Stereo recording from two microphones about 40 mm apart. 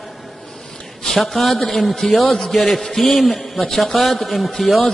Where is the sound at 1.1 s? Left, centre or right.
Centre.